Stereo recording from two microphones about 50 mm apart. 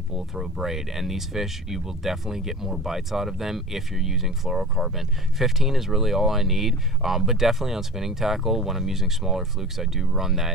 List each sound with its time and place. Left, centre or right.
0.1 s speech: centre